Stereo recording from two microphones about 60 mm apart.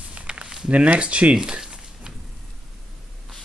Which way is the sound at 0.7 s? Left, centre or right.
Right.